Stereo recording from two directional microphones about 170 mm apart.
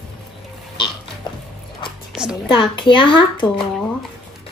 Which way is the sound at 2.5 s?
30° left (ahead or behind).